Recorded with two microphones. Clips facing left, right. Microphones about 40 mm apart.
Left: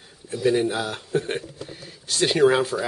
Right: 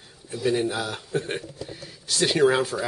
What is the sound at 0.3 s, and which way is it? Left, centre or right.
Speech, centre.